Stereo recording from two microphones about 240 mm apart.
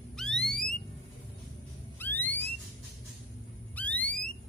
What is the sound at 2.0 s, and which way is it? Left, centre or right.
Music, centre.